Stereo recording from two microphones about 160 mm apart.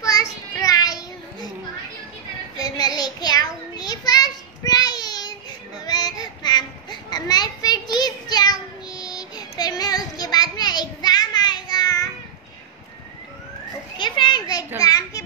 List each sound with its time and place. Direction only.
0.0 s child singing: 20° left (ahead or behind)
2.5 s child singing: 25° left (ahead or behind)
13.9 s children playing: 30° left (ahead or behind)
14.8 s a sound: 20° left (ahead or behind)